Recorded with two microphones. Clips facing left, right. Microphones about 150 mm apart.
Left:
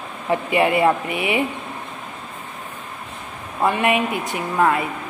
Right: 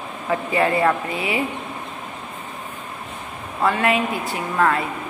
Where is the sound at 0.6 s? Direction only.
15° left (ahead or behind).